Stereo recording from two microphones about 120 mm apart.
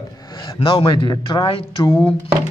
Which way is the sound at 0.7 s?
40° left (ahead or behind).